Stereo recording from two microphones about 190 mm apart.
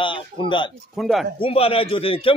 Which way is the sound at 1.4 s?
30° left (ahead or behind).